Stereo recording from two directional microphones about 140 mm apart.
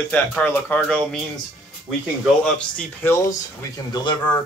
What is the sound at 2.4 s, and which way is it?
Speech, 5° left (ahead or behind).